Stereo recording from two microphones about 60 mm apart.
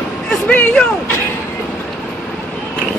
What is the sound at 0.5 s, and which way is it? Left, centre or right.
Speech, left.